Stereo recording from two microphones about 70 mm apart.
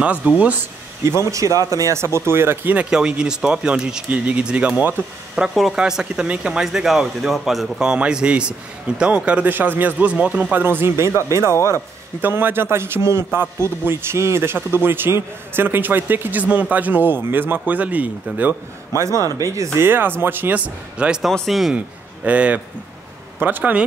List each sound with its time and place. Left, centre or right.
0.0 s speech: right
1.0 s a man's voice: right
2.9 s speech: centre
10.1 s speech: centre
10.5 s a man's voice: right
12.2 s a man's voice: right
18.9 s a man's voice: right
19.8 s a man's voice: right
21.2 s speech: centre
21.7 s a man's voice: centre